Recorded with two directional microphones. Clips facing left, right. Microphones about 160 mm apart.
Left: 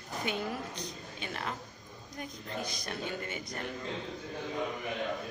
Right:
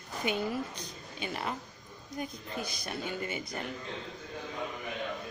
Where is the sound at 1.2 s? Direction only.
10° right (ahead or behind).